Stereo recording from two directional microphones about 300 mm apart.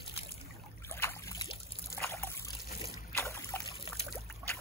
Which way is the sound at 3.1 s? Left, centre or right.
Centre.